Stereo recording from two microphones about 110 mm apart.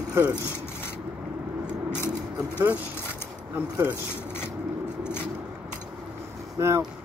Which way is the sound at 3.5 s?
20° right (ahead or behind).